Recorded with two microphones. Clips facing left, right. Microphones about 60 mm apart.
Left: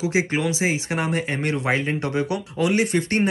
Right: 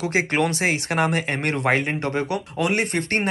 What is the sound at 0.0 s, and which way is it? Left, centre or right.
Speech, right.